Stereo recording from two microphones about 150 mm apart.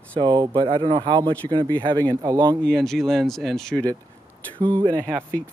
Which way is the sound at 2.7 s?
Centre (ahead or behind).